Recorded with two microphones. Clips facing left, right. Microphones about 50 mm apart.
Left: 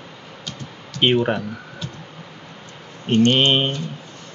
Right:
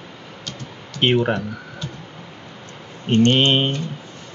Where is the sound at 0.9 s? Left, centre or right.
Centre.